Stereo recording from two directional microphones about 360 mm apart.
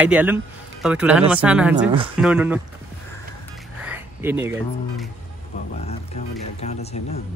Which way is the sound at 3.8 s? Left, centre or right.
Centre.